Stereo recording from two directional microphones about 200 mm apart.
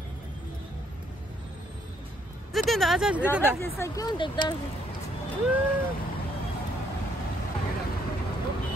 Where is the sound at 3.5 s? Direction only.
15° left (ahead or behind).